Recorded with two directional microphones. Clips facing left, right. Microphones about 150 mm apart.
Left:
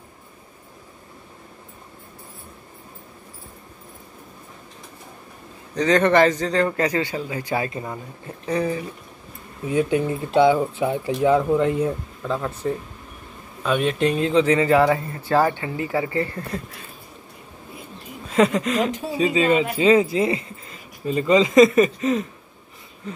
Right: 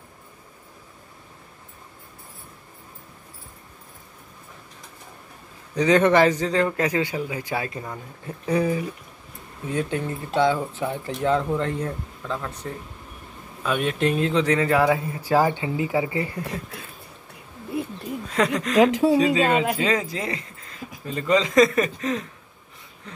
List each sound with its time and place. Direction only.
5.8 s a man's voice: 10° right (ahead or behind)
9.7 s speech: 10° left (ahead or behind); by 16.6 s 15° right (ahead or behind)
18.3 s speech: 5° left (ahead or behind)
18.8 s speech: 90° right
19.8 s speech: 10° left (ahead or behind)